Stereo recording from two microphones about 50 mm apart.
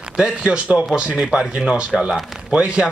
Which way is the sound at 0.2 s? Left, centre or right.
Centre.